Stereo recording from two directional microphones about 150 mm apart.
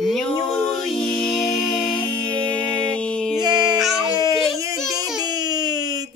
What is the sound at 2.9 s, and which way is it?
Music, 5° left (ahead or behind).